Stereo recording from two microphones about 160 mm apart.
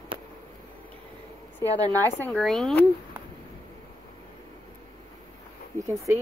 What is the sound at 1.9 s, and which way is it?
Speech, 15° left (ahead or behind).